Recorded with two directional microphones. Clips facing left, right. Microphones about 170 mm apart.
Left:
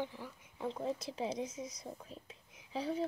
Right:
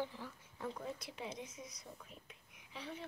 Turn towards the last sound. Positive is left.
turn(degrees=35)  # may be behind; listen again after turning